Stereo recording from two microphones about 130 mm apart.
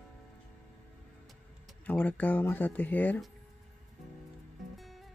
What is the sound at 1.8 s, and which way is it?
Speech, 15° left (ahead or behind).